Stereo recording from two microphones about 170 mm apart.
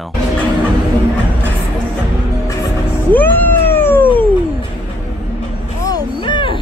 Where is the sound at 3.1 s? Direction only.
10° left (ahead or behind).